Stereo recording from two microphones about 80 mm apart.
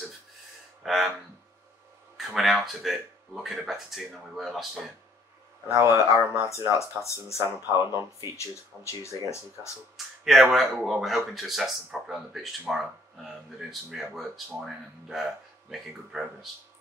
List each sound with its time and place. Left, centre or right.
0.8 s speech: centre
2.1 s a sound: centre
3.6 s speech: centre
5.7 s speech: right
6.5 s speech: left
9.9 s speech: centre